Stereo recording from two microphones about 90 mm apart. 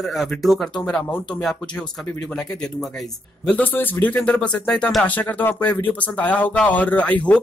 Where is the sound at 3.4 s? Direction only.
15° left (ahead or behind).